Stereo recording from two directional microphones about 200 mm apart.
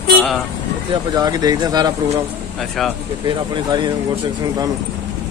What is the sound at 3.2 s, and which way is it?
Speech, 25° right (ahead or behind).